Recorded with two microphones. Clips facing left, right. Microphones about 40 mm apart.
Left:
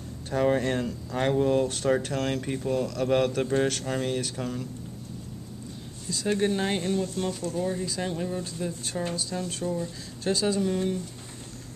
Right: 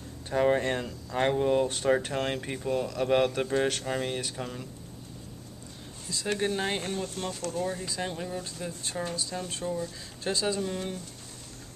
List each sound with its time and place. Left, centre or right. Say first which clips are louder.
0.3 s speech: left 1 dB; centre
6.4 s speech: left 2 dB; centre
6.9 s speech: left 6 dB; right
7.5 s speech: left 3 dB; centre